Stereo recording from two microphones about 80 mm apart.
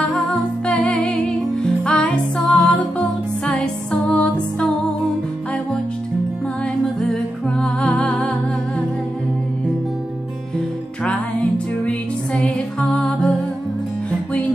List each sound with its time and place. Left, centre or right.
0.1 s music: centre
7.1 s music: centre
11.1 s music: centre